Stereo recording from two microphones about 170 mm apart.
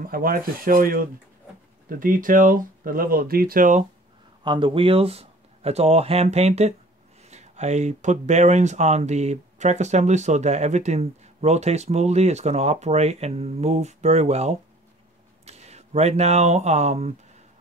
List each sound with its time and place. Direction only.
0.0 s speech: 60° right (ahead or behind)
4.5 s speech: 30° right (ahead or behind)